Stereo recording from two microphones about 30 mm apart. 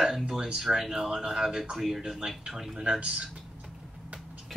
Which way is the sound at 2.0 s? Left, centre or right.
Right.